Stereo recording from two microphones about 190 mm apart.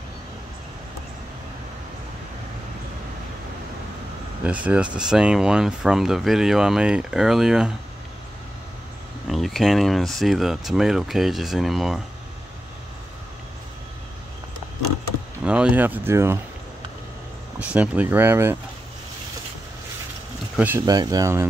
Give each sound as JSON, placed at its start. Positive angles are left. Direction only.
{"t": 4.5, "sound": "speech", "side_deg": -5}
{"t": 9.3, "sound": "speech", "side_deg": 0}
{"t": 15.4, "sound": "speech", "side_deg": -5}
{"t": 17.6, "sound": "speech", "side_deg": -5}
{"t": 20.5, "sound": "speech", "side_deg": -10}
{"t": 20.8, "sound": "speech", "side_deg": -20}